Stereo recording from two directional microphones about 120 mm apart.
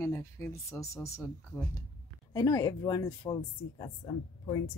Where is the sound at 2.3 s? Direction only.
25° left (ahead or behind).